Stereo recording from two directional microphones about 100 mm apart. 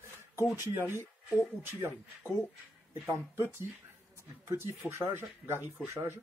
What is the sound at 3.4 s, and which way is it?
Speech, 25° right (ahead or behind).